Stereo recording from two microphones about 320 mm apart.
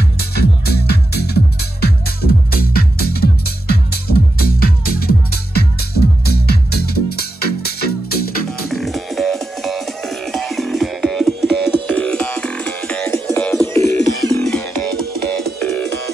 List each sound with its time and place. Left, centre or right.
0.2 s music: left
8.5 s music: centre
13.7 s music: right
14.3 s music: centre